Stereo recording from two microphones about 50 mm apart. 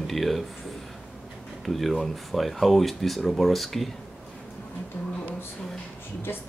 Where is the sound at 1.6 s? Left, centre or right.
Centre.